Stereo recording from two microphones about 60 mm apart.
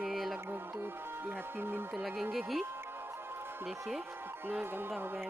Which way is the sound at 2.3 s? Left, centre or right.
Centre.